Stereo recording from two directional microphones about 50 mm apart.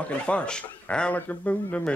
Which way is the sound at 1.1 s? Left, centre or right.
Left.